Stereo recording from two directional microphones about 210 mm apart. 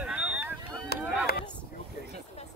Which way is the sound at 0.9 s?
50° left (ahead or behind).